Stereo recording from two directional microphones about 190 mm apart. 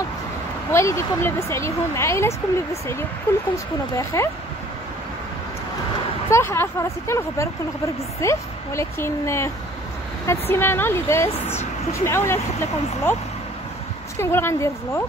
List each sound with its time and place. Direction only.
0.7 s speech: 15° left (ahead or behind)
6.3 s speech: 10° left (ahead or behind)
14.2 s speech: 15° left (ahead or behind)